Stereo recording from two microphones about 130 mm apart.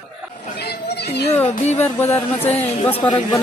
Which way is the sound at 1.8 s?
15° left (ahead or behind).